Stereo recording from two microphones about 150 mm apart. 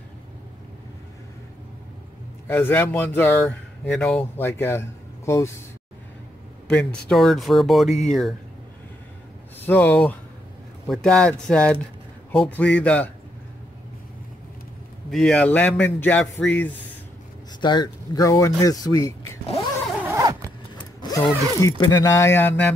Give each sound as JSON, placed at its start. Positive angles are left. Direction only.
{"t": 2.4, "sound": "a man's voice", "side_deg": 15}
{"t": 3.4, "sound": "speech", "side_deg": 0}
{"t": 4.2, "sound": "speech", "side_deg": 15}
{"t": 6.7, "sound": "speech", "side_deg": 5}
{"t": 9.6, "sound": "a man's voice", "side_deg": 15}
{"t": 15.0, "sound": "a man's voice", "side_deg": 0}
{"t": 17.6, "sound": "speech", "side_deg": 30}
{"t": 20.0, "sound": "zipper", "side_deg": -20}
{"t": 20.7, "sound": "vehicle", "side_deg": 30}
{"t": 21.7, "sound": "a man's voice", "side_deg": 25}